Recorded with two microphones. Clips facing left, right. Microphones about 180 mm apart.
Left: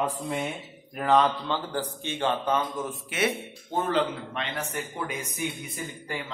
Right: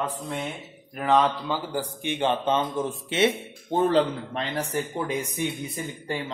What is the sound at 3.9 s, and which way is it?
Speech, 35° right (ahead or behind).